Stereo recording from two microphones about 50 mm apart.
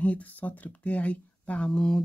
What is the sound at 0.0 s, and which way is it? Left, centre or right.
Speech, left.